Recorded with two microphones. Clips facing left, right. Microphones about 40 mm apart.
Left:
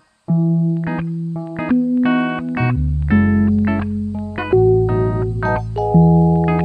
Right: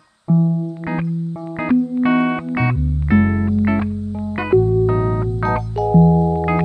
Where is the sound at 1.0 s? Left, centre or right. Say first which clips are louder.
Even; right.